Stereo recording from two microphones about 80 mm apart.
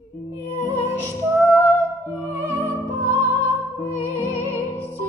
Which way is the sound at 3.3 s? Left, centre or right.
Left.